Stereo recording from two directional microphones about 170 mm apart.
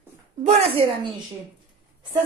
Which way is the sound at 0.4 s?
40° right (ahead or behind).